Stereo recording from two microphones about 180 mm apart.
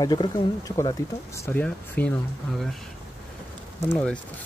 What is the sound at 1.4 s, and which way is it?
Speech, 10° left (ahead or behind).